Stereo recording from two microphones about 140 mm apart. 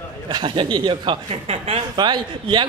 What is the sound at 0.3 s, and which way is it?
Speech, 35° right (ahead or behind).